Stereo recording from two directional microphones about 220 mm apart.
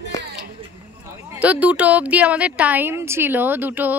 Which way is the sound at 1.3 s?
5° right (ahead or behind).